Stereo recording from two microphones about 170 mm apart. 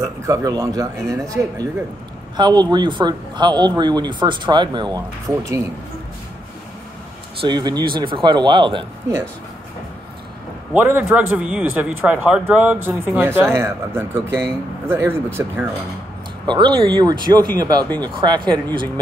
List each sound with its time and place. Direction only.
0.0 s speech: 20° right (ahead or behind)
7.3 s speech: 25° right (ahead or behind)
10.7 s speech: 10° right (ahead or behind)
16.4 s speech: 30° right (ahead or behind)